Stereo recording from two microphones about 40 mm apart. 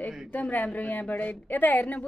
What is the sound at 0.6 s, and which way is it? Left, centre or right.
A woman's voice, left.